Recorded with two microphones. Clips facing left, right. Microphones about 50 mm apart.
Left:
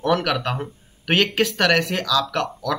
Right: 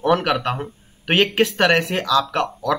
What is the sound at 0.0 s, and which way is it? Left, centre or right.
Speech, centre.